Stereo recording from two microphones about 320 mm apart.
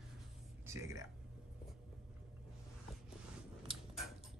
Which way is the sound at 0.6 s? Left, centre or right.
Centre.